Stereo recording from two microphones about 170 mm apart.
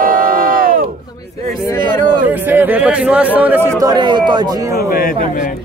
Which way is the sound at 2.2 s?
10° right (ahead or behind).